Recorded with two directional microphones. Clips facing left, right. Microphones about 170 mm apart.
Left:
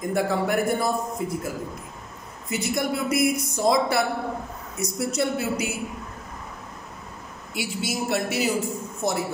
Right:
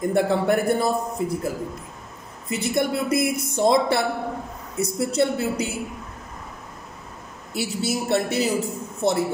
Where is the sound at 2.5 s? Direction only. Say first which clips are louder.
Right 3 dB; 30° right (ahead or behind).